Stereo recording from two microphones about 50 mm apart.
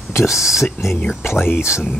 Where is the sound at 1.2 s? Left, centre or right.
Left.